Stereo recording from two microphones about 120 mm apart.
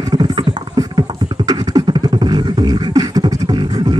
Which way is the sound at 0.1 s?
35° right (ahead or behind).